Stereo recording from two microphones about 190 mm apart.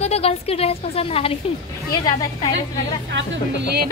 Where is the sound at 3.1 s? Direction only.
65° right (ahead or behind).